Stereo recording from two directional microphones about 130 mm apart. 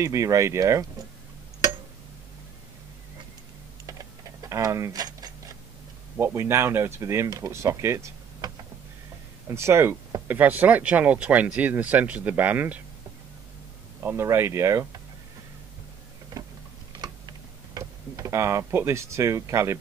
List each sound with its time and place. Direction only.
0.0 s speech: 25° right (ahead or behind)
3.8 s a sound: 25° right (ahead or behind)
6.1 s speech: 15° right (ahead or behind)
9.5 s speech: 20° right (ahead or behind)
14.0 s speech: 20° right (ahead or behind)
16.9 s tick-tock: 30° right (ahead or behind)